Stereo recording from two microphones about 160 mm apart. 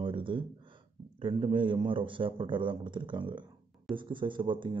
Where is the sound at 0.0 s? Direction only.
30° right (ahead or behind).